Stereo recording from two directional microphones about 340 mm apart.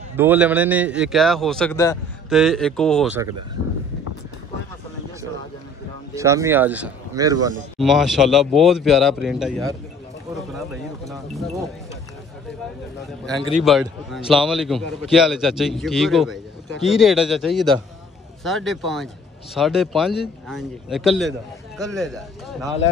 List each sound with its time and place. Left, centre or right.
0.1 s a man's voice: centre
3.6 s a sound: left
6.1 s a man's voice: centre
13.2 s a man's voice: centre